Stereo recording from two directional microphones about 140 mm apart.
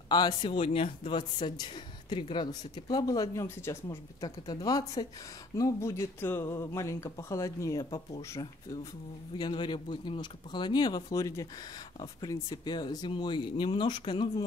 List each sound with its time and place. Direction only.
0.1 s a man's voice: 30° left (ahead or behind)
9.4 s a man's voice: 35° left (ahead or behind)